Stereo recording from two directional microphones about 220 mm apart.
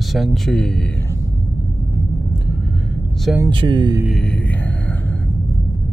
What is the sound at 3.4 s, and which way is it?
Speech, 20° right (ahead or behind).